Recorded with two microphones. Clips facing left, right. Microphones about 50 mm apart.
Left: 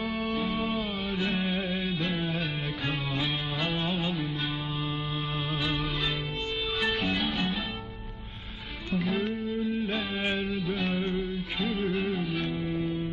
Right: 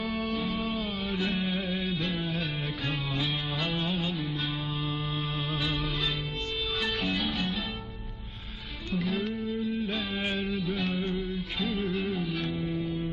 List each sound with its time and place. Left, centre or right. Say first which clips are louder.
0.0 s music: left 1 dB; centre
5.5 s music: left 1 dB; centre
6.8 s music: left 2 dB; centre
8.9 s music: left 2 dB; centre
9.8 s music: left 2 dB; centre
10.4 s music: left 1 dB; centre